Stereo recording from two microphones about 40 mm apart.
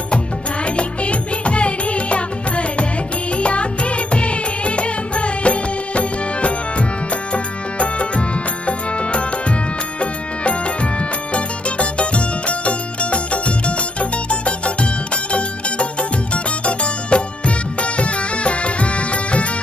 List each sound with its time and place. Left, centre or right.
0.7 s music: left